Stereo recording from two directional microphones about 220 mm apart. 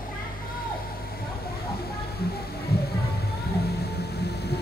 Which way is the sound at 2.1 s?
45° left (ahead or behind).